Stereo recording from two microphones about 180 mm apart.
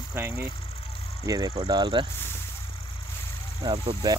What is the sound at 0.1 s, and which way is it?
Speech, 15° right (ahead or behind).